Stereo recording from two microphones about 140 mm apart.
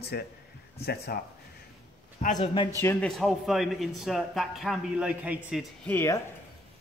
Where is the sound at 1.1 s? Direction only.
90° left.